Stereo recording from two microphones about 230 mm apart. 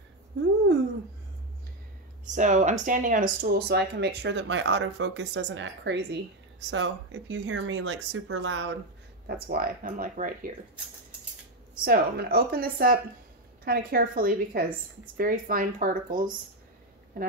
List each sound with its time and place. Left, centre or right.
2.3 s speech: right
9.3 s speech: right
11.8 s speech: right